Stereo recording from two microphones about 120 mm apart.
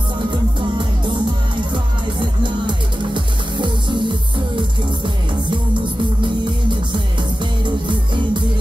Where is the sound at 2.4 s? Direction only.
40° right (ahead or behind).